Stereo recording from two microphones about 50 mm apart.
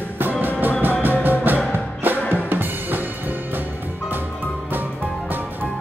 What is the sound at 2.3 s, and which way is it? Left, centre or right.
Drum kit, right.